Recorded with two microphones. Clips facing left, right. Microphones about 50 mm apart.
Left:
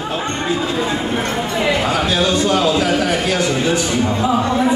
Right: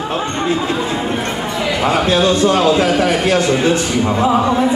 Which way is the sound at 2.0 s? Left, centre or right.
Right.